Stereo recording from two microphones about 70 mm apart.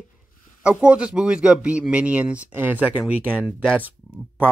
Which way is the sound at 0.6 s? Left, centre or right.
Centre.